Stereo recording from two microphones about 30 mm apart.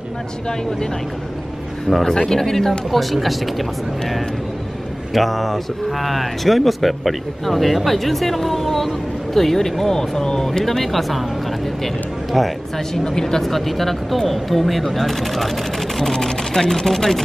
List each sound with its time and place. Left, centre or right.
1.9 s speech: centre
2.2 s speech: centre
2.9 s speech: centre
5.1 s speech: centre; by 10.6 s left
10.6 s speech: centre
12.3 s speech: centre
12.7 s speech: centre
13.4 s speech: centre
16.0 s speech: centre